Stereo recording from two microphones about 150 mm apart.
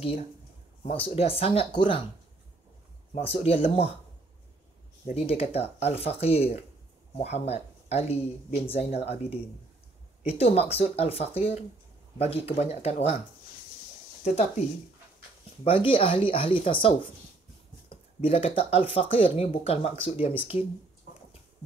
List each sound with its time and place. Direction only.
0.8 s speech: 40° left (ahead or behind)
3.2 s speech: 40° left (ahead or behind)
5.0 s speech: 40° left (ahead or behind)
14.2 s speech: 45° left (ahead or behind)
15.6 s speech: 35° left (ahead or behind)